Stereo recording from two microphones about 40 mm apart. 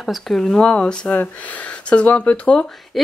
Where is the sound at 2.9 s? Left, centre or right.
Centre.